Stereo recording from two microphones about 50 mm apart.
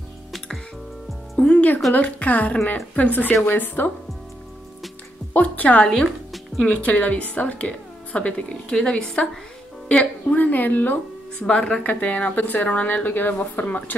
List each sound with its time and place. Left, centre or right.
1.4 s a woman's voice: left
5.3 s a woman's voice: left
6.0 s music: centre
6.6 s a woman's voice: left
9.9 s a woman's voice: left
10.3 s a woman's voice: left
11.4 s a woman's voice: centre
11.8 s a woman's voice: left